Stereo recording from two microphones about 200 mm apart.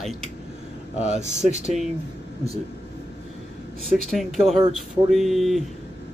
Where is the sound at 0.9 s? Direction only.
35° right (ahead or behind).